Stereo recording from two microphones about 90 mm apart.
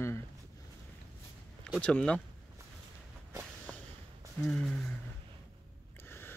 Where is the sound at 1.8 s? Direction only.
15° left (ahead or behind).